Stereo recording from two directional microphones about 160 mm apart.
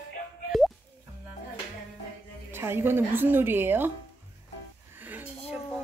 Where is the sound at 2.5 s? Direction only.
15° right (ahead or behind).